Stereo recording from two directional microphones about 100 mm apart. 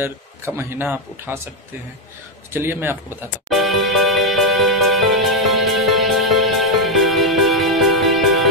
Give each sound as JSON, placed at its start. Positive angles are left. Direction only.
{"t": 0.0, "sound": "speech", "side_deg": -25}
{"t": 2.5, "sound": "speech", "side_deg": -25}
{"t": 3.4, "sound": "music", "side_deg": 0}